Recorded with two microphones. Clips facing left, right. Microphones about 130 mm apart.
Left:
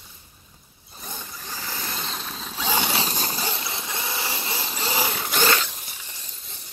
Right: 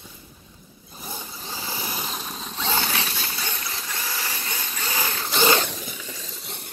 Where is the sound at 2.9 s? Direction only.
35° left (ahead or behind).